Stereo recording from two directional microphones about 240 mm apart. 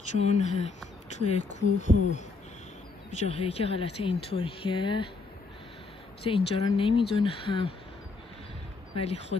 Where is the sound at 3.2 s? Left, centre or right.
Left.